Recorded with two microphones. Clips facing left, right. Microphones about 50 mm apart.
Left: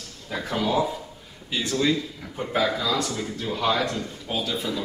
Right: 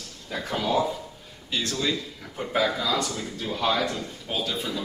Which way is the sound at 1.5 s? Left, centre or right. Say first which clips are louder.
Left 4 dB; centre.